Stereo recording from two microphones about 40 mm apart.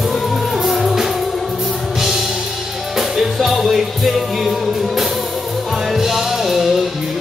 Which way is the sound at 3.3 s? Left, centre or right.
Centre.